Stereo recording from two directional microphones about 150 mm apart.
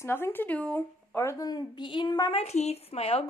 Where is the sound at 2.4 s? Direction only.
45° left (ahead or behind).